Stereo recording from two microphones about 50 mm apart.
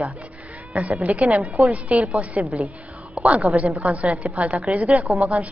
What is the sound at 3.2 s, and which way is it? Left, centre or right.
A woman's voice, right.